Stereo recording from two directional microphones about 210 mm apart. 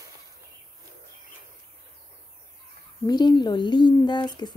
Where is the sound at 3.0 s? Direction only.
20° left (ahead or behind).